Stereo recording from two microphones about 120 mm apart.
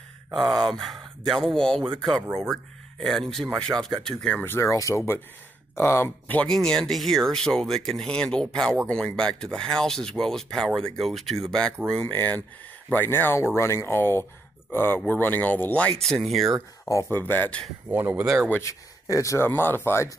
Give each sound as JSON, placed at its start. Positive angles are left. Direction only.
{"t": 0.3, "sound": "speech", "side_deg": 0}
{"t": 11.9, "sound": "speech", "side_deg": 10}
{"t": 16.0, "sound": "speech", "side_deg": 5}
{"t": 16.8, "sound": "speech", "side_deg": 15}
{"t": 17.8, "sound": "speech", "side_deg": -15}
{"t": 18.5, "sound": "speech", "side_deg": 25}